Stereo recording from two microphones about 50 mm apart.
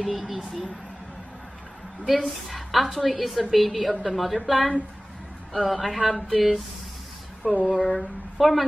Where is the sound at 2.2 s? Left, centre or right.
Centre.